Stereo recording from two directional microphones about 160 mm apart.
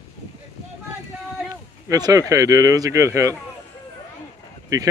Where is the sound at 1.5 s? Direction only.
25° right (ahead or behind).